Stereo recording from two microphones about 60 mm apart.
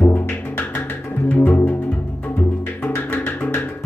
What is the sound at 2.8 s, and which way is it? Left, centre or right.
Music, left.